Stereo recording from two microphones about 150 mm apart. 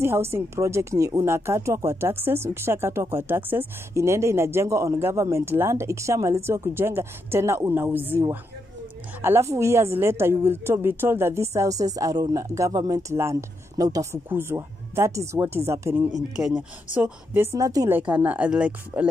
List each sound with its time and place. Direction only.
0.0 s speech: 15° right (ahead or behind)
9.2 s speech: 15° right (ahead or behind)
16.1 s speech: 5° right (ahead or behind)